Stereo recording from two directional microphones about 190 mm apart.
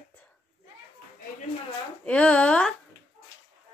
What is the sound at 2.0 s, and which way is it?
Speech, 5° left (ahead or behind).